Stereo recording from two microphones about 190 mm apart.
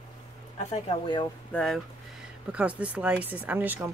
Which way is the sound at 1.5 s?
5° left (ahead or behind).